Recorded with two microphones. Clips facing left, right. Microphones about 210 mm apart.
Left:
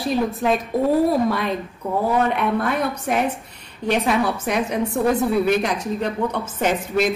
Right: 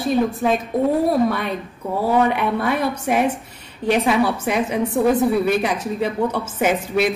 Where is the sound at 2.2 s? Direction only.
5° right (ahead or behind).